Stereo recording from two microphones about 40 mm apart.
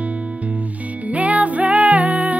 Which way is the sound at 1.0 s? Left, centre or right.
Right.